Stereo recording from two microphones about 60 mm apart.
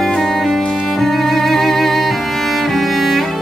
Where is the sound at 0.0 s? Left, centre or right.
Centre.